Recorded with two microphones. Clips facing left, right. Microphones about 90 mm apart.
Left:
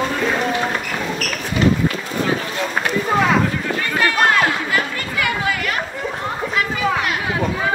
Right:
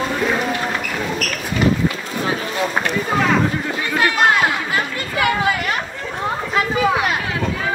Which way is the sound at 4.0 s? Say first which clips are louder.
Right 1 dB; 20° right (ahead or behind).